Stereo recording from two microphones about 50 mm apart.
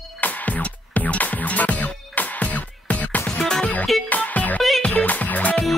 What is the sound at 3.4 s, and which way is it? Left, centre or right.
Music, centre.